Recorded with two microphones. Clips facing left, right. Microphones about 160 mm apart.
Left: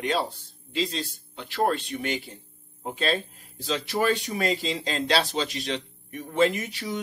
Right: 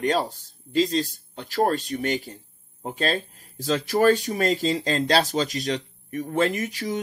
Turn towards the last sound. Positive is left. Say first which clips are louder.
# right 4 dB
turn(degrees=-45)  # may be behind; listen again after turning